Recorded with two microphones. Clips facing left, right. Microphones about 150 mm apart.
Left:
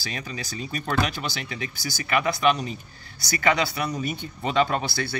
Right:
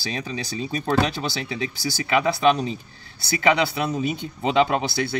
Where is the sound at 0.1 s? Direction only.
30° right (ahead or behind).